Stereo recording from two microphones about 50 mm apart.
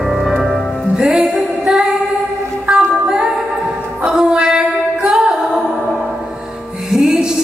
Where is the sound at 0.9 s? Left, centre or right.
Centre.